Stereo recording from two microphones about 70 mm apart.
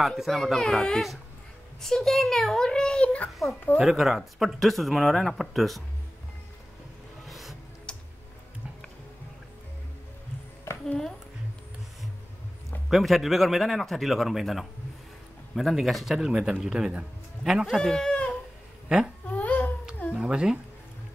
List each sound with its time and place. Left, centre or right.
0.0 s a child's voice: centre
3.7 s speech: centre
7.2 s music: centre
7.9 s tick-tock: centre
10.9 s a sound: centre
12.9 s speech: centre
17.7 s speech: centre
18.9 s speech: centre
19.3 s babbling: left
20.2 s speech: centre